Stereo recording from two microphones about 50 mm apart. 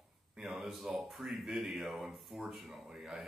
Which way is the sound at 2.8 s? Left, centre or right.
Centre.